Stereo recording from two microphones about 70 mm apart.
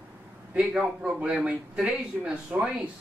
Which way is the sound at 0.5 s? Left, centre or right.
Centre.